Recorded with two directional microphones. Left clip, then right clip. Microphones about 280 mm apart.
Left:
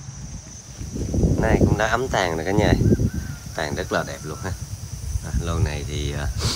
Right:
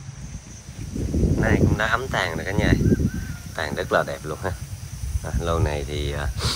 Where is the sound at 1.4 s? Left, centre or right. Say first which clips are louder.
Left 2 dB; centre.